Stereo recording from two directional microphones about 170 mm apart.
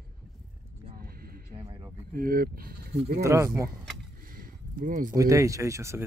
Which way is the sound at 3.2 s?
15° right (ahead or behind).